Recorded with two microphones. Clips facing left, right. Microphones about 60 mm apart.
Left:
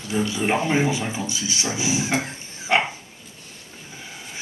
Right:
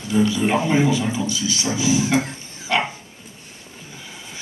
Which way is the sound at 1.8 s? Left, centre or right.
Left.